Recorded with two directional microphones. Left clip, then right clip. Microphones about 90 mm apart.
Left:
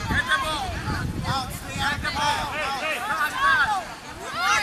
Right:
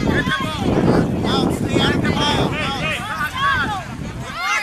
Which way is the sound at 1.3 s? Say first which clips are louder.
Right 9 dB; 5° right (ahead or behind).